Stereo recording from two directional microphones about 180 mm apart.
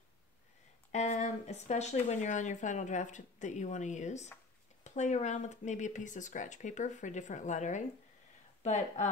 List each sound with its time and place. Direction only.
0.9 s speech: 40° left (ahead or behind)